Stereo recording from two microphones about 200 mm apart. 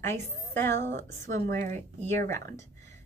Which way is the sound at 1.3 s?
40° right (ahead or behind).